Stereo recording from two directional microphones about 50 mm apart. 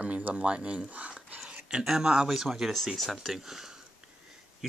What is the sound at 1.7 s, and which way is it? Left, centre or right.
Speech, centre.